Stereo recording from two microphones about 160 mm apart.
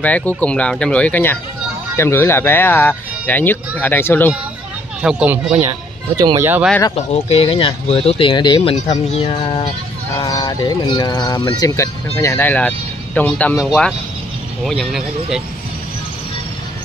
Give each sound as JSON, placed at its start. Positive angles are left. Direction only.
{"t": 0.0, "sound": "speech", "side_deg": 10}
{"t": 5.0, "sound": "speech", "side_deg": -5}
{"t": 5.6, "sound": "speech", "side_deg": -25}
{"t": 6.4, "sound": "speech", "side_deg": -10}
{"t": 7.0, "sound": "speech", "side_deg": 40}